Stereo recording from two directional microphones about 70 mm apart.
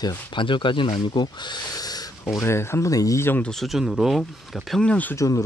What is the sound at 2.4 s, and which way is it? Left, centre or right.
Speech, left.